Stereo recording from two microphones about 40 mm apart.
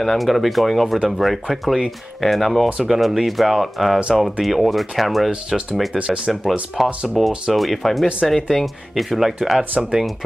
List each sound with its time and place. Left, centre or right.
0.0 s speech: centre
6.0 s speech: centre
9.6 s speech: centre